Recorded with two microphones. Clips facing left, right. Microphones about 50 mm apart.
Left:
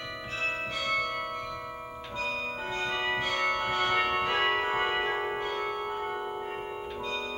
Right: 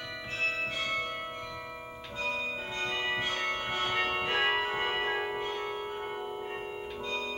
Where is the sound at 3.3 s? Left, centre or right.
Left.